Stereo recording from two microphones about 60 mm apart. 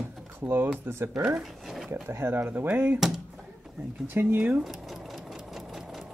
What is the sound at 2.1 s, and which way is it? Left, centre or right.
Speech, right.